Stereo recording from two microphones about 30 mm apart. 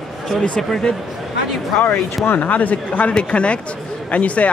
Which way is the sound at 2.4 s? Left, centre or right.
Left.